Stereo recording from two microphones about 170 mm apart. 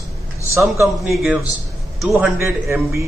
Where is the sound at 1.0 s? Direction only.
5° right (ahead or behind).